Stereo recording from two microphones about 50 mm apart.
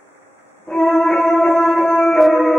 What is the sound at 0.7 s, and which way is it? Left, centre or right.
Music, centre.